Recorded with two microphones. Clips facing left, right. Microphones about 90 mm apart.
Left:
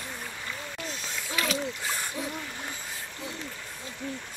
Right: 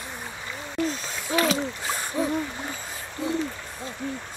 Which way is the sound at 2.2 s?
35° right (ahead or behind).